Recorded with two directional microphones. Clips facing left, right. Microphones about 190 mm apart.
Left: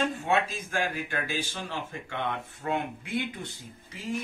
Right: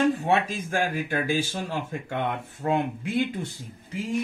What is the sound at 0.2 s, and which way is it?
Speech, 50° right (ahead or behind).